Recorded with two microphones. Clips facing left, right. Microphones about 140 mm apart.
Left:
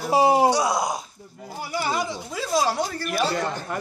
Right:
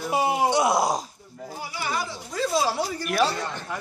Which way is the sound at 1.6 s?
50° left (ahead or behind).